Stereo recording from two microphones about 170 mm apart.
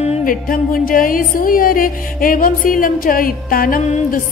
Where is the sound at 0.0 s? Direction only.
45° left (ahead or behind).